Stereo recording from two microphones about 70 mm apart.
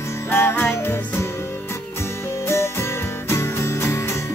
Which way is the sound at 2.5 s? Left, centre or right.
Left.